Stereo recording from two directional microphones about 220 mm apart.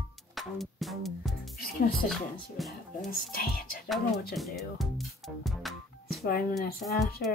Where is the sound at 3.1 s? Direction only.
45° left (ahead or behind).